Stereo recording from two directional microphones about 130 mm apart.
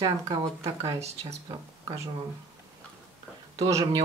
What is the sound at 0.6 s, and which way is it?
Speech, 50° right (ahead or behind).